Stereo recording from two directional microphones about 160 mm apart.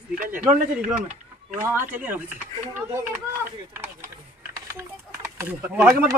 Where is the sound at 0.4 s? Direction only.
5° right (ahead or behind).